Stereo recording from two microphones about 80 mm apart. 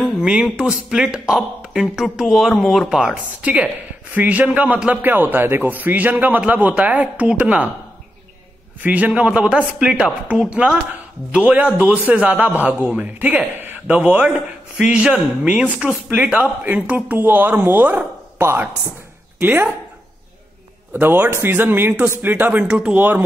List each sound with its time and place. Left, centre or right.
0.2 s a woman's voice: centre
3.4 s a man's voice: centre
8.8 s a woman's voice: centre
16.3 s a man's voice: right
20.9 s a man's voice: right